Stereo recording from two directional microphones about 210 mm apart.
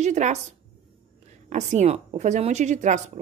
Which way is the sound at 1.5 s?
30° right (ahead or behind).